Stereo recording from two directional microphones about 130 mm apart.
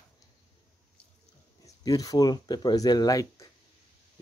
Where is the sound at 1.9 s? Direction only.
30° left (ahead or behind).